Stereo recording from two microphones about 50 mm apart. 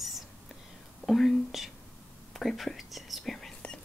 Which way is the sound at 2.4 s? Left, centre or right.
Centre.